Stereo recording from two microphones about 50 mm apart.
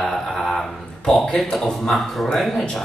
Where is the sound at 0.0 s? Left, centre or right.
Centre.